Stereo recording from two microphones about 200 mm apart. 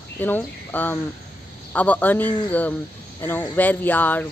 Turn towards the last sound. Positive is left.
turn(degrees=10)  # may be behind; listen again after turning